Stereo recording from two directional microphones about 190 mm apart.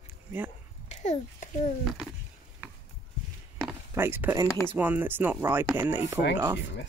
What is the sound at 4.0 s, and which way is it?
Speech, 10° right (ahead or behind).